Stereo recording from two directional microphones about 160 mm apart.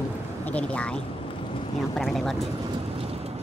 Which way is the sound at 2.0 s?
Centre (ahead or behind).